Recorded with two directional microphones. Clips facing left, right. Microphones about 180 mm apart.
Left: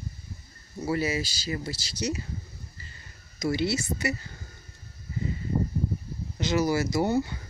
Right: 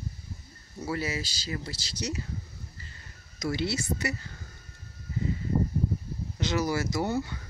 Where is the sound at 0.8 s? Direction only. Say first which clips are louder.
Left 4 dB; 15° left (ahead or behind).